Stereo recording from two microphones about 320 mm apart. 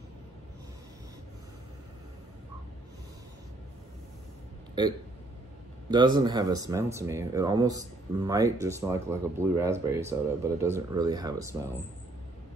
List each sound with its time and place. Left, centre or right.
5.9 s speech: centre